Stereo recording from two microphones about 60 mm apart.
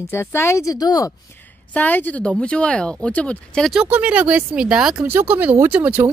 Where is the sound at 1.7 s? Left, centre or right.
Left.